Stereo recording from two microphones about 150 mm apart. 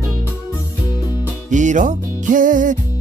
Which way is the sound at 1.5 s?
55° right (ahead or behind).